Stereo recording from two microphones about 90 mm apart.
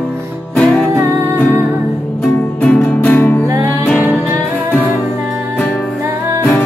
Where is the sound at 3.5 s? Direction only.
35° right (ahead or behind).